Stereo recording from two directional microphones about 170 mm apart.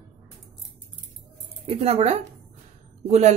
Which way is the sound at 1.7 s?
35° right (ahead or behind).